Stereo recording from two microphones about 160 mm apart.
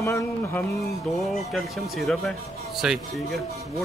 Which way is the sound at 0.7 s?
Centre (ahead or behind).